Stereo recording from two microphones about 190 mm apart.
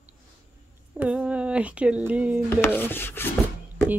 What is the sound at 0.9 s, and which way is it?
Speech, 5° right (ahead or behind).